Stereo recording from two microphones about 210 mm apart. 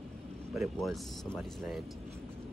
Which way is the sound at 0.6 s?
Centre (ahead or behind).